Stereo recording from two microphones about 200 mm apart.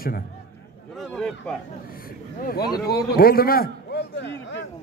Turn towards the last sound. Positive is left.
turn(degrees=60)  # may be behind; listen again after turning